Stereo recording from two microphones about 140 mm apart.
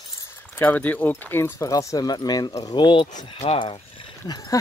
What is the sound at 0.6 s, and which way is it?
Speech, 10° left (ahead or behind).